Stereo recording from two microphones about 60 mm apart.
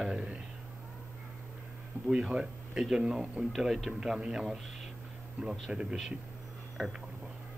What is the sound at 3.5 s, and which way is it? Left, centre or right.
Speech, centre.